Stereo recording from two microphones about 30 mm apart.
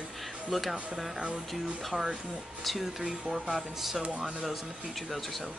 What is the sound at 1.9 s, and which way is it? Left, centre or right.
Speech, right.